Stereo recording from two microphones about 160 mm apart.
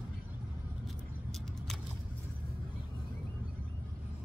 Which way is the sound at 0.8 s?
Centre (ahead or behind).